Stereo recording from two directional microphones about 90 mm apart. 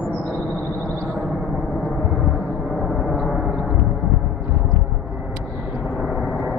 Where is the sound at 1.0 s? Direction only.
Centre (ahead or behind).